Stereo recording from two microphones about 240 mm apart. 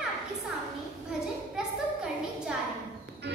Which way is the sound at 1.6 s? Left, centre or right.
Centre.